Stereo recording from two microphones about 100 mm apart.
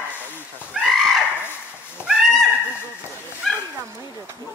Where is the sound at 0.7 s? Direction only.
5° right (ahead or behind).